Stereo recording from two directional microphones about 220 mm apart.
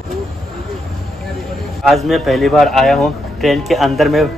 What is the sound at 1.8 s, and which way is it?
A man's voice, centre (ahead or behind).